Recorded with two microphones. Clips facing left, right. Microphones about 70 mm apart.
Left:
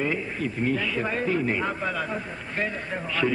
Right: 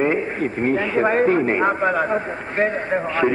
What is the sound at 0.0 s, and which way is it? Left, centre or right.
A man's voice, right.